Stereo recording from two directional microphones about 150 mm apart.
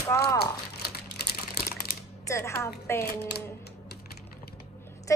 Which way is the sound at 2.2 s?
20° left (ahead or behind).